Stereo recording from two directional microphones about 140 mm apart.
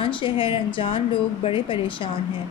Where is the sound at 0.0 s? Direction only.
40° left (ahead or behind).